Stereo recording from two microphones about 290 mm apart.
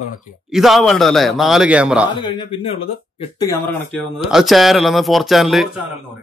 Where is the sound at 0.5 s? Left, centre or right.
Centre.